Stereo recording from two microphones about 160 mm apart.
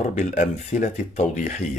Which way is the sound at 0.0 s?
50° left (ahead or behind).